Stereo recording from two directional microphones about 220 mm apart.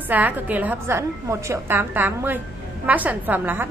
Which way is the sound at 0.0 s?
10° right (ahead or behind).